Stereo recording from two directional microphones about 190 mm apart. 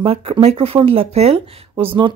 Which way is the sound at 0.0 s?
30° right (ahead or behind).